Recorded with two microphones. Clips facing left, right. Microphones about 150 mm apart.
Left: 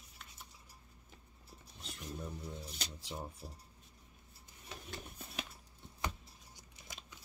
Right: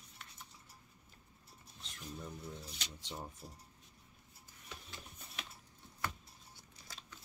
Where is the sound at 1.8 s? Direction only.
5° left (ahead or behind).